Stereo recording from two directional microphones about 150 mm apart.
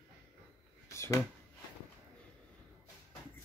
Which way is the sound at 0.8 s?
20° left (ahead or behind).